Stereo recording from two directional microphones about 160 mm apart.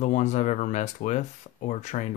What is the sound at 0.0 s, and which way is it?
Speech, 45° left (ahead or behind).